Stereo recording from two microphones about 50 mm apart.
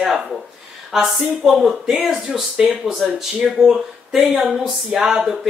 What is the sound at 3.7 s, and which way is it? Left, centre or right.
Speech, centre.